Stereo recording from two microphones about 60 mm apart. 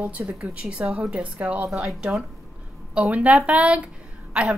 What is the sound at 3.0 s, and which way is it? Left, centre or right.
Speech, right.